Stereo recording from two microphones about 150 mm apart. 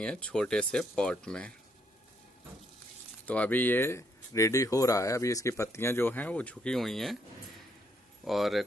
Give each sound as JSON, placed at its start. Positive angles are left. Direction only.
{"t": 0.0, "sound": "speech", "side_deg": 5}
{"t": 3.3, "sound": "speech", "side_deg": 10}
{"t": 8.3, "sound": "speech", "side_deg": 0}